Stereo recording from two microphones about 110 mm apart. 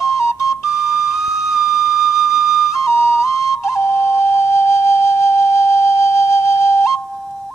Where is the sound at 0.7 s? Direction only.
5° right (ahead or behind).